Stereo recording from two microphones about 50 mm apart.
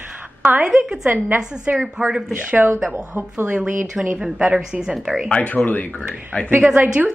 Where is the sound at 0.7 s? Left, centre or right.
Centre.